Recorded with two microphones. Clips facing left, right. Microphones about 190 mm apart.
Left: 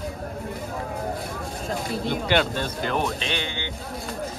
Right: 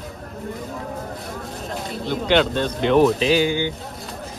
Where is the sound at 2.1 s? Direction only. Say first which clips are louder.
Right 5 dB; 5° left (ahead or behind).